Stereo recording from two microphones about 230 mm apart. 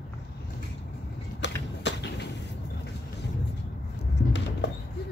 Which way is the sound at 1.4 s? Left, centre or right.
Left.